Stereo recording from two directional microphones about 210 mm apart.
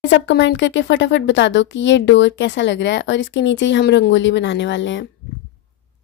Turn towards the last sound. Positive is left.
turn(degrees=60)  # may be behind; listen again after turning